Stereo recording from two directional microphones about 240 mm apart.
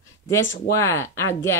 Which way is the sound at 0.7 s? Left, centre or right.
Centre.